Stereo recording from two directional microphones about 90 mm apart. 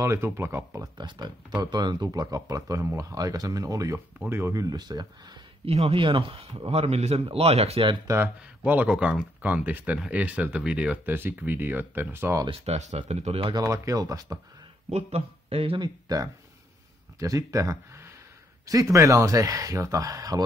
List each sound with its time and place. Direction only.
0.0 s speech: 30° right (ahead or behind)
0.9 s speech: 55° right (ahead or behind)
2.0 s speech: 40° right (ahead or behind)
4.2 s speech: 25° right (ahead or behind)
4.6 s speech: 45° right (ahead or behind)
5.9 s speech: 80° right
8.1 s speech: 20° right (ahead or behind)
13.4 s speech: 50° right (ahead or behind)
15.5 s speech: 85° right
16.1 s speech: 45° right (ahead or behind)